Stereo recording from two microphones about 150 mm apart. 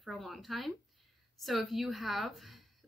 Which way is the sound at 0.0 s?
Centre (ahead or behind).